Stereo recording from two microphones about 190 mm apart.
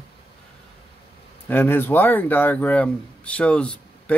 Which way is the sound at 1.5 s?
10° left (ahead or behind).